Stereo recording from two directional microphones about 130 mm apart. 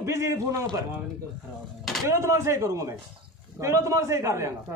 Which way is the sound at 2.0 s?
20° right (ahead or behind).